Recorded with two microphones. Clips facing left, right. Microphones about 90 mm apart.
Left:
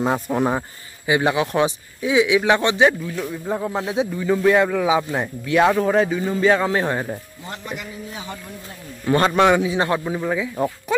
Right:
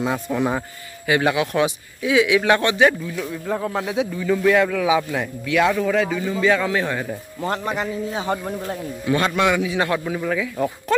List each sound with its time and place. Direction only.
0.0 s a man's voice: 35° left (ahead or behind)
0.5 s speech: 15° left (ahead or behind)
3.8 s a man's voice: 25° left (ahead or behind)
7.4 s a man's voice: 45° right (ahead or behind)
9.0 s speech: 40° left (ahead or behind); by 10.7 s 20° left (ahead or behind)